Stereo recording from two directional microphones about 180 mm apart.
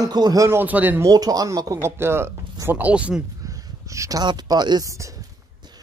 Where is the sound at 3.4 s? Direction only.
20° right (ahead or behind).